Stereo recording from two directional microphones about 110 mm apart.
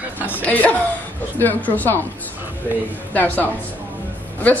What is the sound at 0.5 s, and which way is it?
A woman's voice, 15° left (ahead or behind).